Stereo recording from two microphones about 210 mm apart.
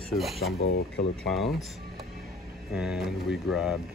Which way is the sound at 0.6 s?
55° left (ahead or behind).